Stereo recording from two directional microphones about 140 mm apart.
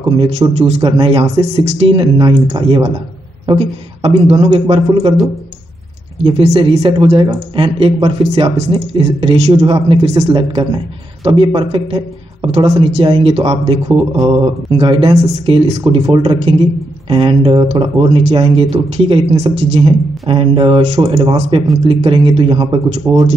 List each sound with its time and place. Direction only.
0.6 s a man's voice: 50° right (ahead or behind)
0.8 s a man's voice: 40° right (ahead or behind)
6.2 s speech: 45° right (ahead or behind)